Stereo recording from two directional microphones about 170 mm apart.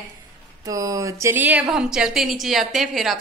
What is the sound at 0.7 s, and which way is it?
A woman's voice, 20° right (ahead or behind).